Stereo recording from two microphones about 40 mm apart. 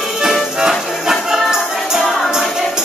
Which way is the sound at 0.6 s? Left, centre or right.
Centre.